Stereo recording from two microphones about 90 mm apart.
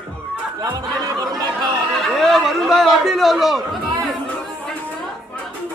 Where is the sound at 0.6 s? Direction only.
40° right (ahead or behind).